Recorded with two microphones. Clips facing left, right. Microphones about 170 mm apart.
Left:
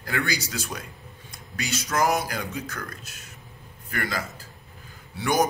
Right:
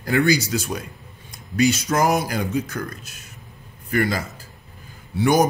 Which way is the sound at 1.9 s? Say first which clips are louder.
Right 4 dB; 20° right (ahead or behind).